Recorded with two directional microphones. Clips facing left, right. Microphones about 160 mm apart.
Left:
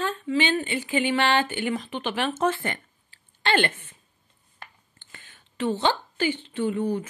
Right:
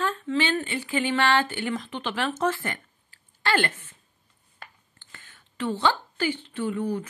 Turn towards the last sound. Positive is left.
turn(degrees=25)  # may be behind; listen again after turning